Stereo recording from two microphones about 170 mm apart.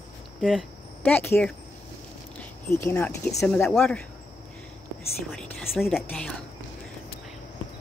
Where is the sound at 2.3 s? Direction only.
15° left (ahead or behind).